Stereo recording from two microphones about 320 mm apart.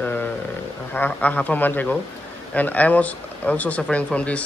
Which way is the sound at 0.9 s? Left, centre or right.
Centre.